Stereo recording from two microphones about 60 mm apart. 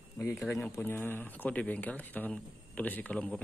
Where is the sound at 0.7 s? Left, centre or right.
Left.